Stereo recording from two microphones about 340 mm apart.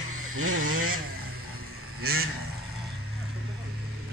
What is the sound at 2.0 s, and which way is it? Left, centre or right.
Goose, right.